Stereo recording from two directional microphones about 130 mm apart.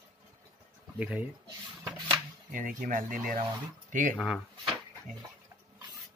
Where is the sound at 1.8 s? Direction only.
15° right (ahead or behind).